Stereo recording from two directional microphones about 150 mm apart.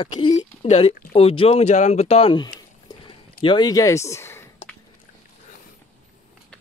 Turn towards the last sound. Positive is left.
turn(degrees=15)  # may be behind; listen again after turning